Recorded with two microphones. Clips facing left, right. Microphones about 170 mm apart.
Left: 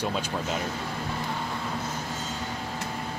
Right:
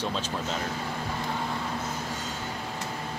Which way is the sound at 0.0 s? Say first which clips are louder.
Left 2 dB; 10° left (ahead or behind).